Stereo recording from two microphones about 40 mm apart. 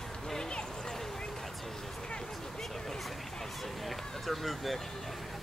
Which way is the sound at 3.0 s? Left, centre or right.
Centre.